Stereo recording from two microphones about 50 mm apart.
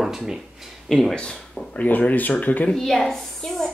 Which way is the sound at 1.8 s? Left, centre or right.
Left.